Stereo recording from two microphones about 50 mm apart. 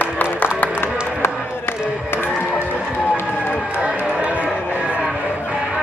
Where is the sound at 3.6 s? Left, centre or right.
Right.